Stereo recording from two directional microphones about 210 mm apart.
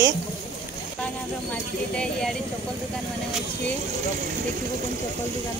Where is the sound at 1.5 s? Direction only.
5° left (ahead or behind).